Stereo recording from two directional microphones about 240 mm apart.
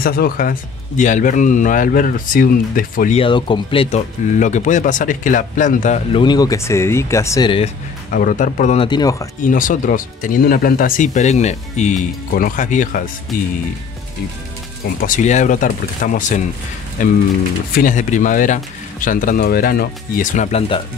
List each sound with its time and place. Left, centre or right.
0.0 s speech: left
3.2 s speech: left
8.1 s speech: left
8.8 s speech: centre
9.5 s speech: left
15.0 s speech: left